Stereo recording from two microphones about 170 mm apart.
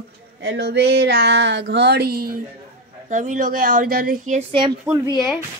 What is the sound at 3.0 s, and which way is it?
A woman's voice, 45° right (ahead or behind).